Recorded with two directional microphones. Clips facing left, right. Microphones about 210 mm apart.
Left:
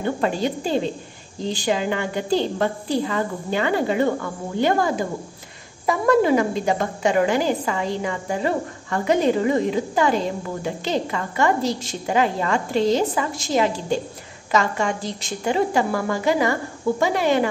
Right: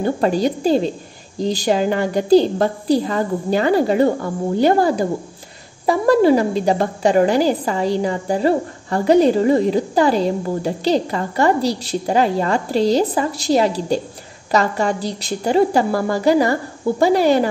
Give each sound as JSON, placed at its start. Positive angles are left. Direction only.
{"t": 0.0, "sound": "a woman's voice", "side_deg": -40}